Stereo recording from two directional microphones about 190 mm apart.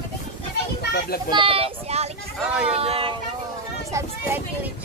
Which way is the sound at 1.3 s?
25° right (ahead or behind).